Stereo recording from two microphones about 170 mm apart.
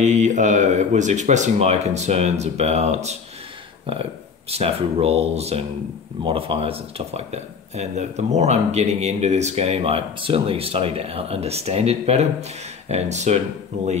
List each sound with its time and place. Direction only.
0.0 s speech: 45° right (ahead or behind)
4.5 s speech: 35° right (ahead or behind)